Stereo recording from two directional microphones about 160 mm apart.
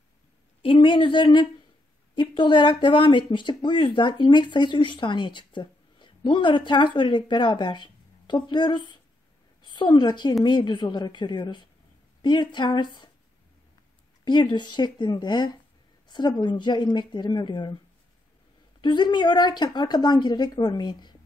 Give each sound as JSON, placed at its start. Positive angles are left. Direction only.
{"t": 0.6, "sound": "a woman's voice", "side_deg": 35}
{"t": 14.2, "sound": "speech", "side_deg": 30}
{"t": 18.8, "sound": "speech", "side_deg": 30}